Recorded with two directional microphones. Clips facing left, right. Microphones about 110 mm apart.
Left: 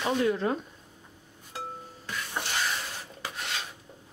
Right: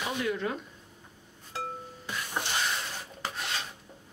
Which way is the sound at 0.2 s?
35° left (ahead or behind).